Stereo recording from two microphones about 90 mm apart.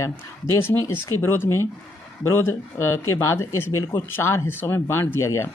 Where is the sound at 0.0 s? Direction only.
30° left (ahead or behind).